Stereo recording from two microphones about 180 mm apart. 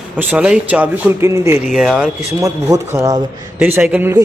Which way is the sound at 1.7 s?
Centre (ahead or behind).